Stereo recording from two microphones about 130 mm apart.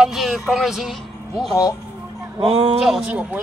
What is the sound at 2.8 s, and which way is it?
Speech, centre (ahead or behind).